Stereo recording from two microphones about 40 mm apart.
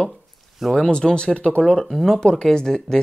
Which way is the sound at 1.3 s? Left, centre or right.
Left.